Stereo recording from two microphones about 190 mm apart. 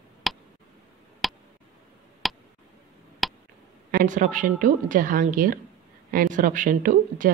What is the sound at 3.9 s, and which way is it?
Speech, 45° right (ahead or behind).